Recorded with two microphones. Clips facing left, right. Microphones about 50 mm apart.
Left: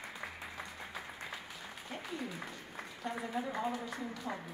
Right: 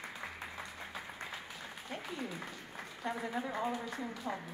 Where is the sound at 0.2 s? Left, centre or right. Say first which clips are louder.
Even; centre.